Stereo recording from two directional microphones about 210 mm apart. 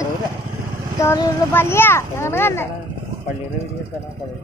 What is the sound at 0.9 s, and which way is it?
A child's voice, 15° left (ahead or behind).